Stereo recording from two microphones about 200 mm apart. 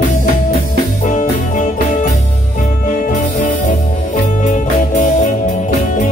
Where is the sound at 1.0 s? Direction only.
40° left (ahead or behind).